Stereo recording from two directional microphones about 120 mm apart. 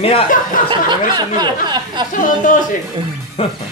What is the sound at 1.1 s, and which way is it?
Speech, 35° right (ahead or behind).